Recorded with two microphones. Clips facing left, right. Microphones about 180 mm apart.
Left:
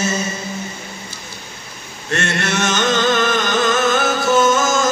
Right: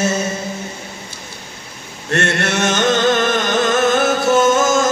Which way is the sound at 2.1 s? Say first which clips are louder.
Right 2 dB; 55° right (ahead or behind).